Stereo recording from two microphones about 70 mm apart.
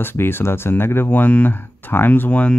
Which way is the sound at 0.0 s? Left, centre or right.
Left.